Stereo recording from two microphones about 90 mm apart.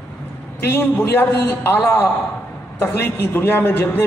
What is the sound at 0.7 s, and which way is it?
A man's voice, 25° left (ahead or behind).